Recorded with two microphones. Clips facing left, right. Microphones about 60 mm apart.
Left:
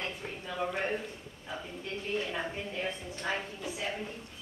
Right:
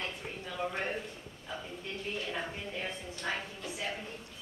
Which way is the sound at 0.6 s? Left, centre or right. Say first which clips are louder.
Left 2 dB; centre.